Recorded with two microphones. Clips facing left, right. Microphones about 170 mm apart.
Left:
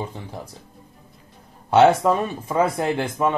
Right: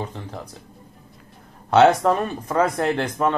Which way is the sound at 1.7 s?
15° left (ahead or behind).